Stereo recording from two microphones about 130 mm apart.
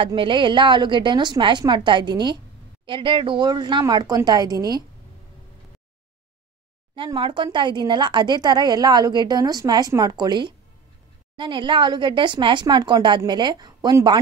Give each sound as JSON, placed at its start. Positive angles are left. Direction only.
{"t": 0.0, "sound": "a woman's voice", "side_deg": -40}
{"t": 7.2, "sound": "a woman's voice", "side_deg": -40}